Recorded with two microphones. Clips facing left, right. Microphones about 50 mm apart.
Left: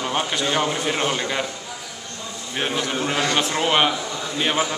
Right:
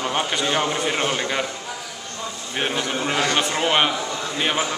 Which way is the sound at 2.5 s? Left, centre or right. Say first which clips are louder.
Even; centre.